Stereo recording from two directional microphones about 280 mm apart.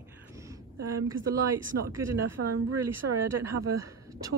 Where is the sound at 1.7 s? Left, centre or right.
Right.